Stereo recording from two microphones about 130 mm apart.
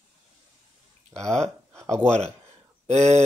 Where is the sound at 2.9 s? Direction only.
60° right (ahead or behind).